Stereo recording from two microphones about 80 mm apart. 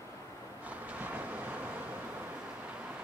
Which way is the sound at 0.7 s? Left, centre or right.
Centre.